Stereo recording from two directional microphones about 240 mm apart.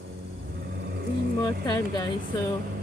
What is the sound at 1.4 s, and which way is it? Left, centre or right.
Speech, centre.